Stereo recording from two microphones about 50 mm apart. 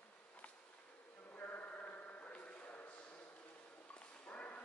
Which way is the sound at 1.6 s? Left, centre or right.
Left.